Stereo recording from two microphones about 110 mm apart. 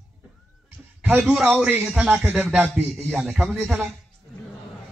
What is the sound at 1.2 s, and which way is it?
A man's voice, 5° right (ahead or behind).